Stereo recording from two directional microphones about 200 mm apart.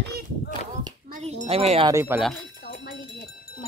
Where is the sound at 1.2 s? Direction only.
30° right (ahead or behind).